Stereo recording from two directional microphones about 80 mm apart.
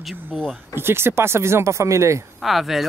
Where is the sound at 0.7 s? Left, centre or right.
Right.